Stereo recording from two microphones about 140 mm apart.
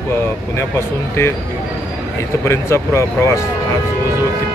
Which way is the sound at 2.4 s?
20° left (ahead or behind).